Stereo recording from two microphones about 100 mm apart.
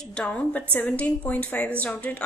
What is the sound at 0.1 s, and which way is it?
A woman's voice, 10° left (ahead or behind).